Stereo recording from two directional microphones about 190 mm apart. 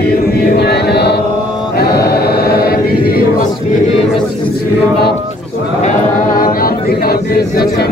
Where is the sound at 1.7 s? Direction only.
55° left (ahead or behind).